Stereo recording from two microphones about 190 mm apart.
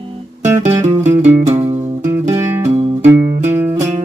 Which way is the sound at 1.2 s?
35° right (ahead or behind).